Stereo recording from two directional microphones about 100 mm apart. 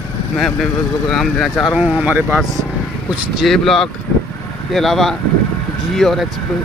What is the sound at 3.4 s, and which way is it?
Speech, 5° left (ahead or behind).